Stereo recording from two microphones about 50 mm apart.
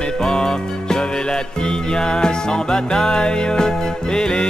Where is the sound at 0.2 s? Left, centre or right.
Centre.